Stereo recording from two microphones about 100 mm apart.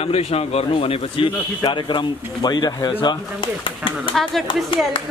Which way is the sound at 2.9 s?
55° left (ahead or behind).